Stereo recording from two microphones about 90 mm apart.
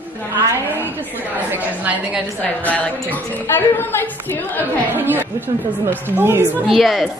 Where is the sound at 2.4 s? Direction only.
15° left (ahead or behind).